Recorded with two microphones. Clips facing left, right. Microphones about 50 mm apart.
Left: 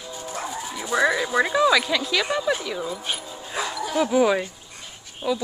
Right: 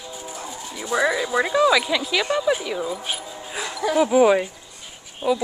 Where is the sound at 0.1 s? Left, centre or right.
Centre.